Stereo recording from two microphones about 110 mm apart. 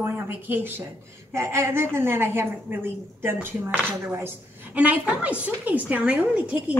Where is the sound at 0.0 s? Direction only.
20° right (ahead or behind).